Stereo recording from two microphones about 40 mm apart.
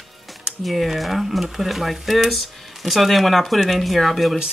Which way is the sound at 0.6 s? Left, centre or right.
Centre.